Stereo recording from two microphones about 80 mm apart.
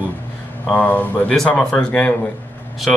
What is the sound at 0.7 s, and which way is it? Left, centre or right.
Speech, centre.